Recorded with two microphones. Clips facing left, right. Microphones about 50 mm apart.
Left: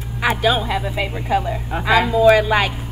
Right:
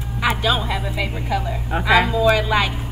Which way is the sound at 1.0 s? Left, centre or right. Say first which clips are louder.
Left 5 dB; left.